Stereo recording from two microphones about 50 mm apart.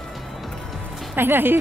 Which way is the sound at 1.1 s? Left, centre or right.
Right.